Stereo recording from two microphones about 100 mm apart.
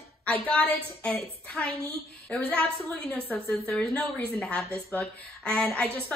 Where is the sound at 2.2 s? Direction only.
15° left (ahead or behind).